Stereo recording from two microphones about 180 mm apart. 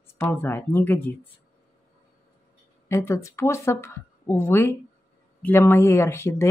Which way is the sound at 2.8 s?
15° left (ahead or behind).